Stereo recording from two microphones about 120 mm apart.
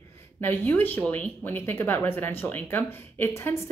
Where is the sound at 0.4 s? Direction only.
15° left (ahead or behind).